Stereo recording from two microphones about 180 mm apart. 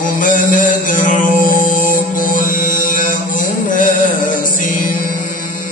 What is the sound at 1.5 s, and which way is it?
Music, 45° left (ahead or behind).